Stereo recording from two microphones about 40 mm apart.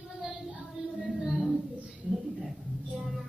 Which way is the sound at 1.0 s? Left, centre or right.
Centre.